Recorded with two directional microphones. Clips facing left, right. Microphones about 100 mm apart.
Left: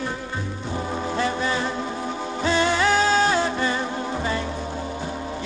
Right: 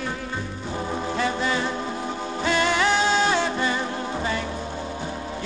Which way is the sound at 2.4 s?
30° left (ahead or behind).